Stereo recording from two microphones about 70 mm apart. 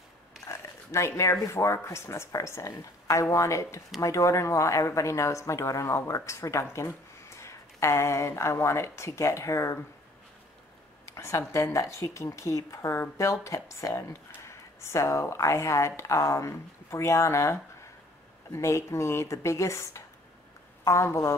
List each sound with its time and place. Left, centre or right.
0.5 s speech: left
11.1 s speech: left